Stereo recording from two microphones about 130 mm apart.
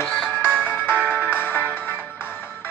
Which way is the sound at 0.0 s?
5° left (ahead or behind).